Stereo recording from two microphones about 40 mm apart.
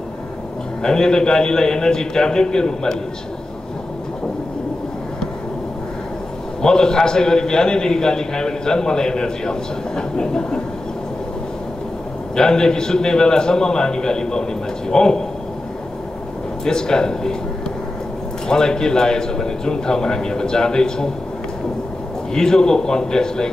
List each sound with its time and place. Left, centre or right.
0.8 s a man's voice: centre
6.6 s a man's voice: centre
12.4 s a man's voice: centre
16.6 s a man's voice: centre
18.5 s a man's voice: centre
22.3 s a man's voice: centre